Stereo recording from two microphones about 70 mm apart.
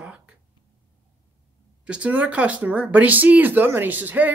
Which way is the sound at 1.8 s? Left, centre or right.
Centre.